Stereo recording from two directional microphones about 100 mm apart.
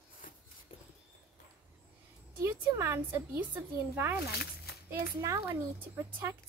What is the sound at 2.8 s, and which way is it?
A woman's voice, 25° right (ahead or behind).